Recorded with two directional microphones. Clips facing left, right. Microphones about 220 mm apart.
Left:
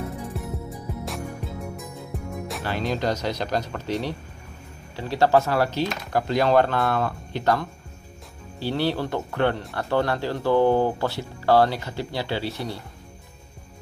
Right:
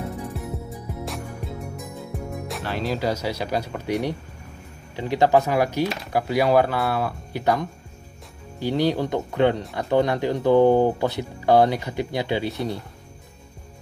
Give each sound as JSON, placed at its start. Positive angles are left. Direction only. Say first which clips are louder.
{"t": 0.3, "sound": "music", "louder": "even", "side_deg": 0}
{"t": 2.4, "sound": "speech", "louder": "left 1 dB", "side_deg": 0}